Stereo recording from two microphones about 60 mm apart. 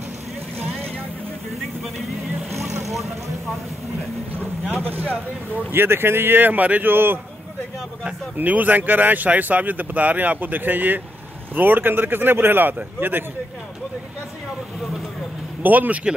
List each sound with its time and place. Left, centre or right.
5.7 s speech: right
8.4 s speech: right
15.6 s speech: right